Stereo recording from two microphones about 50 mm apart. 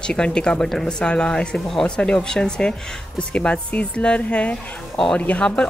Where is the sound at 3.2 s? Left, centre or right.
Left.